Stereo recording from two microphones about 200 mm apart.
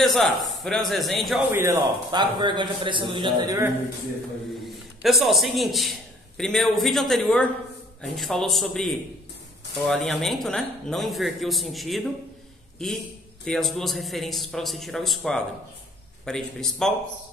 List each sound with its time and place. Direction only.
0.0 s a man's voice: centre (ahead or behind)
1.5 s a man's voice: 15° right (ahead or behind)
4.6 s a man's voice: centre (ahead or behind)